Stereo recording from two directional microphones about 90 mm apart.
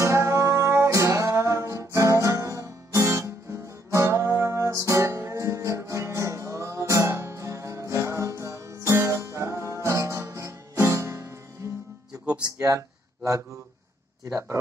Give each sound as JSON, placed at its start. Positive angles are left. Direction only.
{"t": 0.0, "sound": "music", "side_deg": -35}
{"t": 12.5, "sound": "a sound", "side_deg": -35}
{"t": 14.2, "sound": "speech", "side_deg": -30}